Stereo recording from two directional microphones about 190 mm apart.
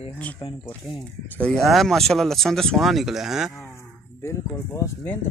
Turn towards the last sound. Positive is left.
turn(degrees=15)  # may be behind; listen again after turning